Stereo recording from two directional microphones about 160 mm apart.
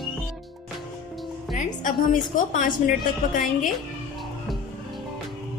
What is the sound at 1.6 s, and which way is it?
A woman's voice, 50° left (ahead or behind).